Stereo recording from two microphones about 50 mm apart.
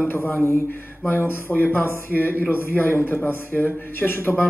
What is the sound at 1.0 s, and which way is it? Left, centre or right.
A man's voice, left.